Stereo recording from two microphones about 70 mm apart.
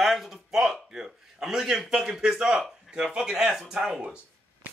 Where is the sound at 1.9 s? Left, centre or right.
Centre.